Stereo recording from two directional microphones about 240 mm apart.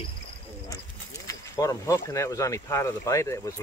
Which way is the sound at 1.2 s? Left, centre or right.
Centre.